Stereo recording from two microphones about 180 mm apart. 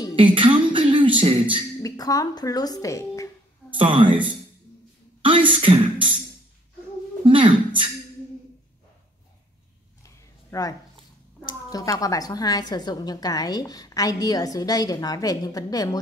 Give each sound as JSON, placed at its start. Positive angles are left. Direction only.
{"t": 0.1, "sound": "music", "side_deg": -30}
{"t": 1.8, "sound": "a woman's voice", "side_deg": 20}
{"t": 3.7, "sound": "speech", "side_deg": -30}
{"t": 5.5, "sound": "speech", "side_deg": -30}
{"t": 7.2, "sound": "a sound", "side_deg": -30}
{"t": 10.0, "sound": "a sound", "side_deg": 20}
{"t": 11.7, "sound": "a woman's voice", "side_deg": 20}